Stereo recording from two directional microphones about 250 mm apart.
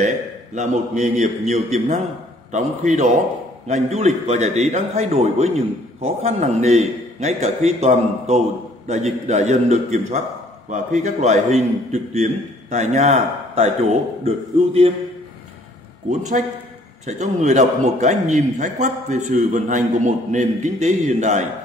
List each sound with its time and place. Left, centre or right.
0.6 s a man's voice: right
3.6 s a man's voice: right
16.1 s a man's voice: right